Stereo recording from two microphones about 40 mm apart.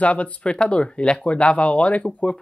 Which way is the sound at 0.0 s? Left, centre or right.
Left.